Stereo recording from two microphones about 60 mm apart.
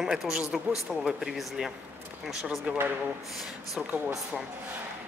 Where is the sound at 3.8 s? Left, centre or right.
Centre.